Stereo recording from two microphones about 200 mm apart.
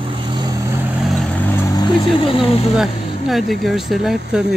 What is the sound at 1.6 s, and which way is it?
Vehicle, 20° left (ahead or behind).